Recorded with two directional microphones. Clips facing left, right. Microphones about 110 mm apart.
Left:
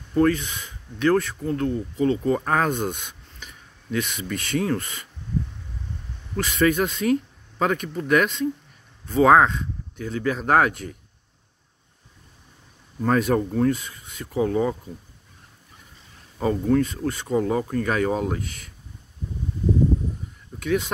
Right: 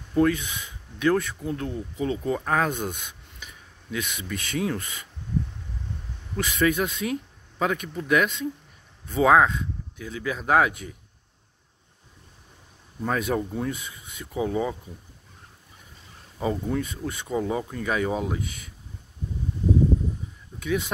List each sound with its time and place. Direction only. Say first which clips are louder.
0.1 s speech: left 2 dB; 5° right (ahead or behind)
6.3 s speech: left 3 dB; 5° right (ahead or behind)
13.0 s speech: left 5 dB; 5° right (ahead or behind)
16.3 s speech: left 6 dB; 10° right (ahead or behind)
20.5 s a sound: left 3 dB; 10° right (ahead or behind)